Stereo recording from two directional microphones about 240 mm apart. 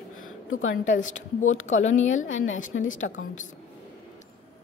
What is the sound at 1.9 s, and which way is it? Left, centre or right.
Speech, left.